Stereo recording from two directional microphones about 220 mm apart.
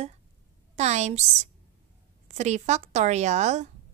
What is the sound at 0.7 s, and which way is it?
A woman's voice, 30° right (ahead or behind).